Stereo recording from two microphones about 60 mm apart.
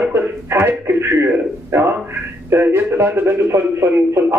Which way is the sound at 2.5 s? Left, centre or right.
Right.